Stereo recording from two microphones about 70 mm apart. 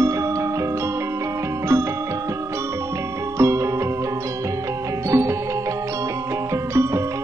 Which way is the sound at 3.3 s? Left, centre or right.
Right.